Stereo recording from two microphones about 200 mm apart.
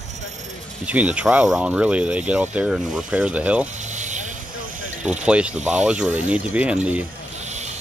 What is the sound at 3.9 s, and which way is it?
Vehicle, 35° right (ahead or behind).